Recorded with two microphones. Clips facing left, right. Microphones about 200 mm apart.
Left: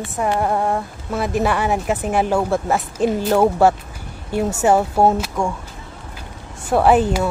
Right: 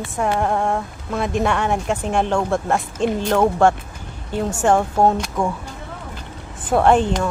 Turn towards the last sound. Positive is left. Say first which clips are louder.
# left 1 dB
turn(degrees=5)  # may be behind; listen again after turning